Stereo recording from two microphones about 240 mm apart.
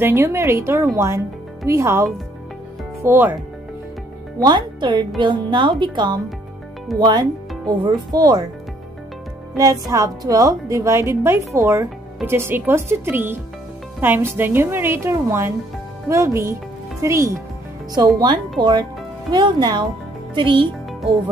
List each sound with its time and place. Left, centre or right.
0.0 s a woman's voice: centre
4.4 s a woman's voice: centre
9.6 s a woman's voice: centre